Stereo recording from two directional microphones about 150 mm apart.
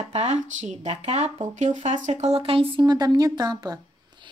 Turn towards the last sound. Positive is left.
turn(degrees=-25)  # may be behind; listen again after turning